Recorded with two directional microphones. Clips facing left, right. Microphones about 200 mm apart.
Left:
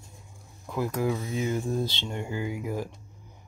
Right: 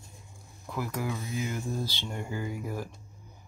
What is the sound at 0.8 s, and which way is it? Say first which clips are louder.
Speech: left 6 dB; 25° left (ahead or behind).